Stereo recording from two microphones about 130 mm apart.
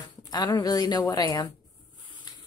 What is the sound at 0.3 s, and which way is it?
Speech, 30° left (ahead or behind).